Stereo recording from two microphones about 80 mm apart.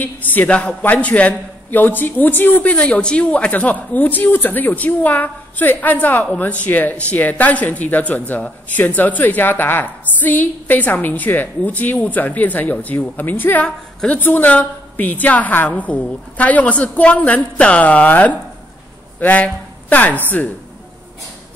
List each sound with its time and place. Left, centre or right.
0.0 s speech: left